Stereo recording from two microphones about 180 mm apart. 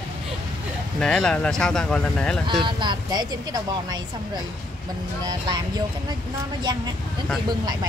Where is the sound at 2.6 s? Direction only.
25° right (ahead or behind).